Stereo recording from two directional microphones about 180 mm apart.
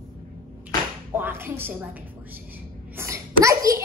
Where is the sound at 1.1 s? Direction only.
10° right (ahead or behind).